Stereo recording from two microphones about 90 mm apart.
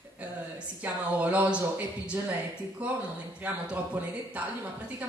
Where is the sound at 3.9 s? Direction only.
15° right (ahead or behind).